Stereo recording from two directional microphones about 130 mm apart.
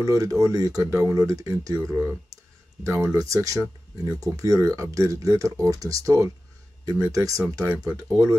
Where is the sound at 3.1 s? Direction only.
25° right (ahead or behind).